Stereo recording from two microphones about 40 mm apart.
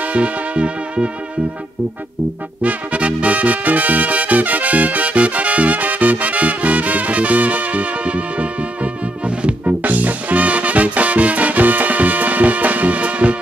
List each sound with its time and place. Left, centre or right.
0.0 s music: right
2.6 s music: right
9.8 s music: right